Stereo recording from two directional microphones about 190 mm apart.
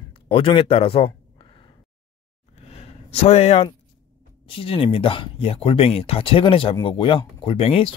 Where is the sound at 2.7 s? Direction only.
30° left (ahead or behind).